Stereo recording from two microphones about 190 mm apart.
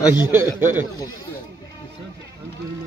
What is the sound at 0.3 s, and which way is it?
Speech, 10° right (ahead or behind).